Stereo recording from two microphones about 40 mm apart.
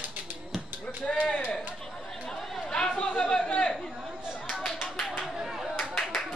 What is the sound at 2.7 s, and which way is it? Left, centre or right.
Chatter, left.